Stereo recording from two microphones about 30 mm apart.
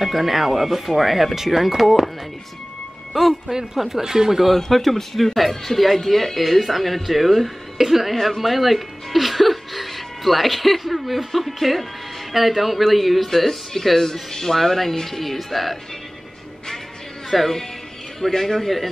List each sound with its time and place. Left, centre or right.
0.0 s speech: centre
3.1 s speech: centre
4.0 s speech: centre
4.6 s speech: centre
17.3 s speech: centre
18.3 s speech: centre
18.6 s speech: centre